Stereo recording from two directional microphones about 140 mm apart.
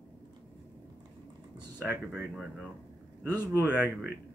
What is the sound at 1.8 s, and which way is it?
Speech, 10° right (ahead or behind).